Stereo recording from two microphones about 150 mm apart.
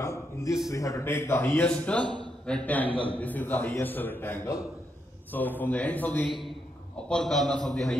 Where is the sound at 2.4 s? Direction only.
10° left (ahead or behind).